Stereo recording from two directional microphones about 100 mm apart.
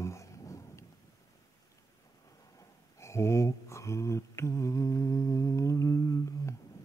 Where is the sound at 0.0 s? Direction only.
30° left (ahead or behind).